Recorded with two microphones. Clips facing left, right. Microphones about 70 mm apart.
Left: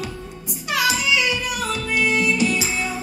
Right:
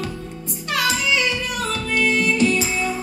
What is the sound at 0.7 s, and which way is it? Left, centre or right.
Music, centre.